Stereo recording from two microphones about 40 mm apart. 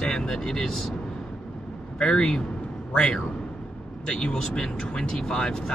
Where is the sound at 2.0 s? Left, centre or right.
Left.